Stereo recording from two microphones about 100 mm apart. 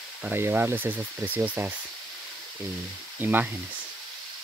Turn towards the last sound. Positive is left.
turn(degrees=-20)  # may be behind; listen again after turning